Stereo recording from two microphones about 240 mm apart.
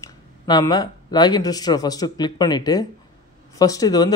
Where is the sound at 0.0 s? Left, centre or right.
Centre.